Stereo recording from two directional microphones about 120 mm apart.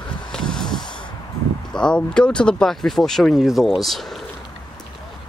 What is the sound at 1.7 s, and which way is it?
Speech, 5° left (ahead or behind).